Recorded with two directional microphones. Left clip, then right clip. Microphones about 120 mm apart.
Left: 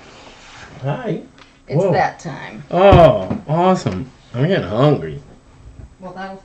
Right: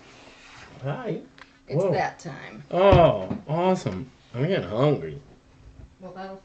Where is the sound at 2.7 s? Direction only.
5° right (ahead or behind).